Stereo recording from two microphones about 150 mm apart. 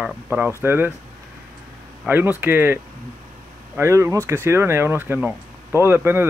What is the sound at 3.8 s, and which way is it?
Speech, 20° right (ahead or behind).